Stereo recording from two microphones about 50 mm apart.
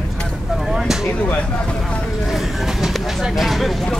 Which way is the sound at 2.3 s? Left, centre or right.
Centre.